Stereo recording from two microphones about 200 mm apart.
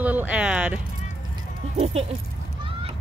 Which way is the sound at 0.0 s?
10° right (ahead or behind).